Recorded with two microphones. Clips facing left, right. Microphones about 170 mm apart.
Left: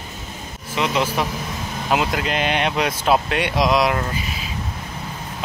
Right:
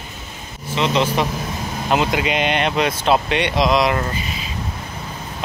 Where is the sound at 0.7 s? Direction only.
5° left (ahead or behind).